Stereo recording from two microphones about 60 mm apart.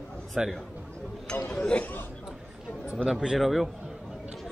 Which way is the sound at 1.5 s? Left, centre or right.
Centre.